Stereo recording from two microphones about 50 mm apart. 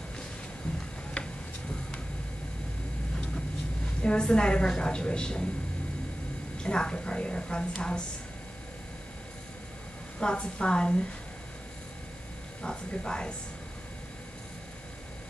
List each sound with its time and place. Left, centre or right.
4.0 s a woman's voice: centre
6.6 s a woman's voice: centre
10.2 s a woman's voice: centre
12.6 s a woman's voice: centre